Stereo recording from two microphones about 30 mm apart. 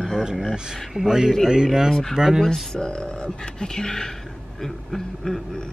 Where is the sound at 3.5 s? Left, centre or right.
Centre.